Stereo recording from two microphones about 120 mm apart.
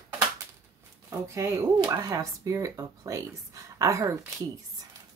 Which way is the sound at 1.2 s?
25° right (ahead or behind).